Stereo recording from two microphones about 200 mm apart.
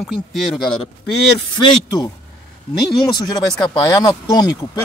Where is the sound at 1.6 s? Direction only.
25° left (ahead or behind).